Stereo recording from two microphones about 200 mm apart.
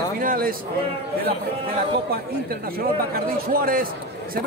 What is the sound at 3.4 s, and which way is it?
Speech, 50° right (ahead or behind).